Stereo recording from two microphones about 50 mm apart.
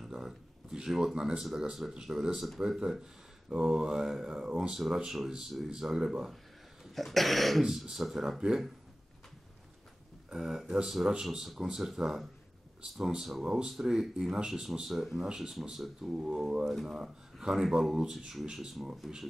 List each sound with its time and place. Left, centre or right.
0.0 s a sound: centre
0.7 s speech: centre
3.4 s speech: centre
7.0 s cough: centre
7.6 s speech: centre
10.3 s speech: centre
11.3 s cough: centre
11.6 s speech: centre
11.9 s cough: centre
13.2 s speech: centre
14.8 s cough: centre
15.2 s speech: centre